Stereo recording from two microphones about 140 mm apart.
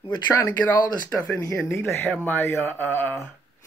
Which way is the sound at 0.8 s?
30° left (ahead or behind).